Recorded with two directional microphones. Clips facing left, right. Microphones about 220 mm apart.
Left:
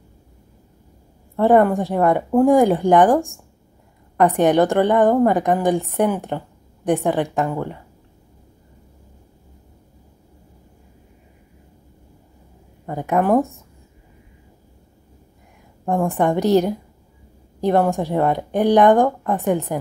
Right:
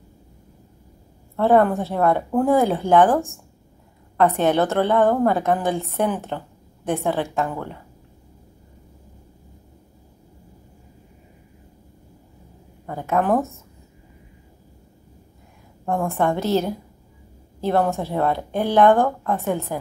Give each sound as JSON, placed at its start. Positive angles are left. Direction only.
{"t": 1.3, "sound": "a woman's voice", "side_deg": 15}
{"t": 12.8, "sound": "a woman's voice", "side_deg": 15}
{"t": 15.8, "sound": "a woman's voice", "side_deg": 15}